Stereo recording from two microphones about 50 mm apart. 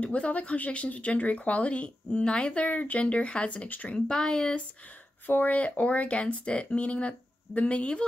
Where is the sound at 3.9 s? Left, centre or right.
Centre.